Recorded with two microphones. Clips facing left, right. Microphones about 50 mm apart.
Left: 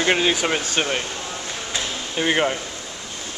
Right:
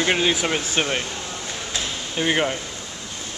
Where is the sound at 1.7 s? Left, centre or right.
Centre.